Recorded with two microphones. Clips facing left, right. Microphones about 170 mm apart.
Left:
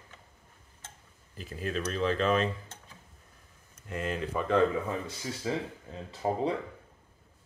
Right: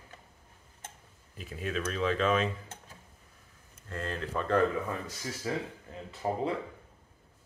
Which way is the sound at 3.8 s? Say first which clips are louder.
Left 3 dB; 15° left (ahead or behind).